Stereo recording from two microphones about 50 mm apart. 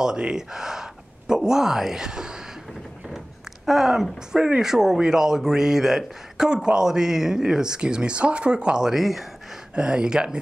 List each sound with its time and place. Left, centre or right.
0.0 s speech: centre
3.6 s speech: centre
9.8 s speech: centre